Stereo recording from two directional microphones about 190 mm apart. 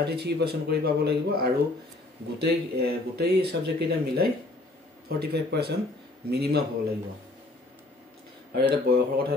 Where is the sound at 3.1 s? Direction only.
60° right (ahead or behind).